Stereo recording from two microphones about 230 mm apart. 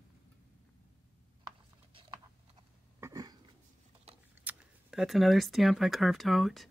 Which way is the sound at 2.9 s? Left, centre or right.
Centre.